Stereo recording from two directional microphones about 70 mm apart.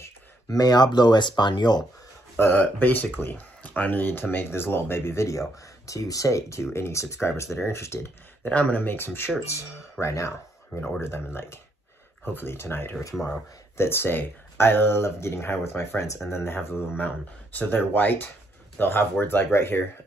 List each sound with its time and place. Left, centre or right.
0.5 s speech: left
2.3 s speech: left
8.5 s speech: centre
9.5 s speech: left
17.0 s speech: left